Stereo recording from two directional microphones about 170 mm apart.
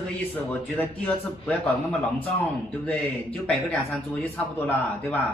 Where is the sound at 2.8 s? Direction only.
10° left (ahead or behind).